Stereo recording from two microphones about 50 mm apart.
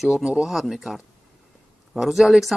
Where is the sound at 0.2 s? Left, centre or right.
Centre.